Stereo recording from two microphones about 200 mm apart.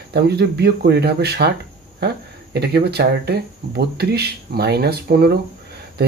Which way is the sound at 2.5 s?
55° right (ahead or behind).